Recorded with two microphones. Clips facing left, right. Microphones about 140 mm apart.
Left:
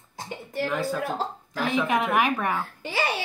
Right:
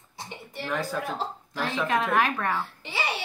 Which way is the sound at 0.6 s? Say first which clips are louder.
Left 3 dB; centre (ahead or behind).